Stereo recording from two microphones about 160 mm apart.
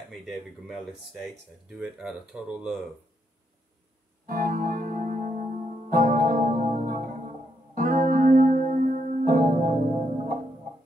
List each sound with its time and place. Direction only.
1.7 s speech: 5° right (ahead or behind)
4.3 s keyboard: 60° right (ahead or behind)
7.7 s music: 55° right (ahead or behind)